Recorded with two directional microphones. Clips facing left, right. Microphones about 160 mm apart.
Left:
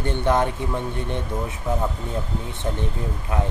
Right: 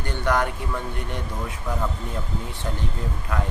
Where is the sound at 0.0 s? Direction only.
25° left (ahead or behind).